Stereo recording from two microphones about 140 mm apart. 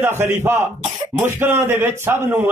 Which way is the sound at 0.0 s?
15° right (ahead or behind).